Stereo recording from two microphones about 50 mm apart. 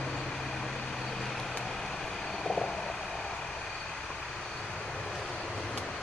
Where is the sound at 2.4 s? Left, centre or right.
Centre.